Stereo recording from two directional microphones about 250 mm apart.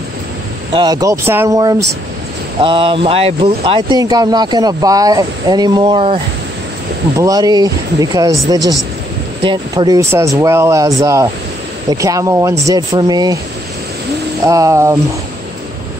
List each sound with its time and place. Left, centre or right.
0.7 s speech: centre
7.2 s speech: centre
14.4 s speech: centre